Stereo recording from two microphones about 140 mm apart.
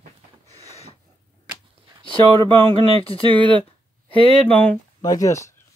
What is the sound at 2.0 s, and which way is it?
Speech, 35° right (ahead or behind).